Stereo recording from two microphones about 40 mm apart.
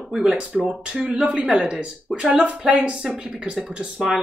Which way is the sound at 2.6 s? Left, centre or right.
Right.